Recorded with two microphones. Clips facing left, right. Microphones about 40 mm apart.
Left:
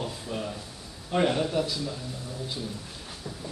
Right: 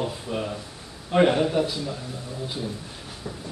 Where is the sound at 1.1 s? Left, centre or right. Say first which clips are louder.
Right 5 dB; right.